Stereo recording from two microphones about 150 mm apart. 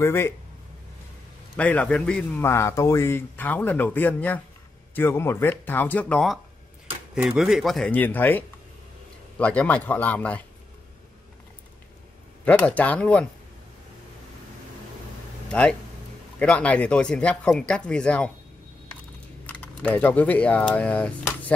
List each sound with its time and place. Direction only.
0.0 s a man's voice: 15° left (ahead or behind)
1.6 s a man's voice: 10° left (ahead or behind)
12.4 s a man's voice: 10° left (ahead or behind)
16.3 s a man's voice: 10° left (ahead or behind)
19.4 s speech: 10° left (ahead or behind)